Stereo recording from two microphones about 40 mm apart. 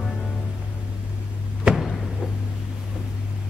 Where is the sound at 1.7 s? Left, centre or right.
Right.